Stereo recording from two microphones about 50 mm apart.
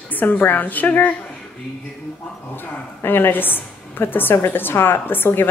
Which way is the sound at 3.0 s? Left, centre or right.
Left.